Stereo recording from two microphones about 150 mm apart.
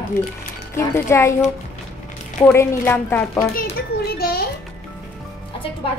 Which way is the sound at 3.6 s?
90° left.